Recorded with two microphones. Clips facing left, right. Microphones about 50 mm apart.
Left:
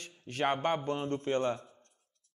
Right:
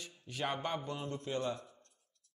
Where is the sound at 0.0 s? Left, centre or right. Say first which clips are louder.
Left 7 dB; left.